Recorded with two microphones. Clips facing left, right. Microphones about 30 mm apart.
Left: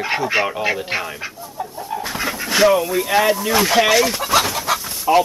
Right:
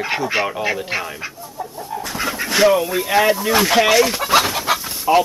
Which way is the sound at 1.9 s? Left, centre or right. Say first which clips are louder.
Left 2 dB; left.